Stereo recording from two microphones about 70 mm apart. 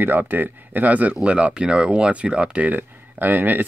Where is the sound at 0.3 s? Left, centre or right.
Right.